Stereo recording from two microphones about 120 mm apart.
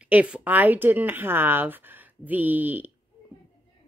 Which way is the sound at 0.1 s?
10° right (ahead or behind).